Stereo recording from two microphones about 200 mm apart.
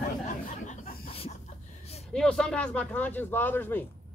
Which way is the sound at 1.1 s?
30° left (ahead or behind).